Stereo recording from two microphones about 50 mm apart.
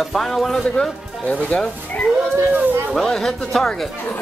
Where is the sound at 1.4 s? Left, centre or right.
Left.